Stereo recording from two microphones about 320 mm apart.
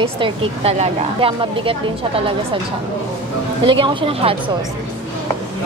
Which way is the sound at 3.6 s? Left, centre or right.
Centre.